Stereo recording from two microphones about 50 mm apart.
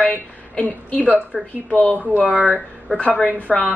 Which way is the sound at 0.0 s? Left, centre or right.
Left.